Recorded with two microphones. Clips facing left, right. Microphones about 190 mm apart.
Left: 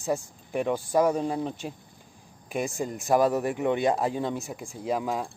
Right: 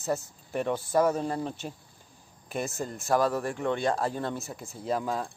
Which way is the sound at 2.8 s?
15° left (ahead or behind).